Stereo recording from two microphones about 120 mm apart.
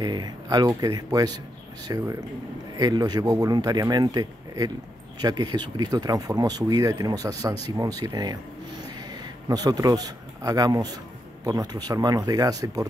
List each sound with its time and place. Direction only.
0.0 s speech: 35° right (ahead or behind)